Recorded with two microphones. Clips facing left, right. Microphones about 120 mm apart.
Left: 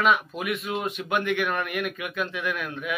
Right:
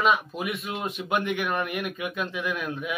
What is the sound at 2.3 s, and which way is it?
Speech, 25° right (ahead or behind).